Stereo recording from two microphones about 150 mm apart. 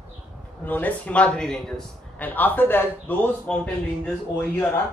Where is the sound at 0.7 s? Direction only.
10° left (ahead or behind).